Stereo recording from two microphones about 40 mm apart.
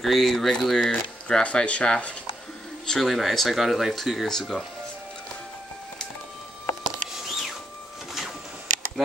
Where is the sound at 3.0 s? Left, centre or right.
Centre.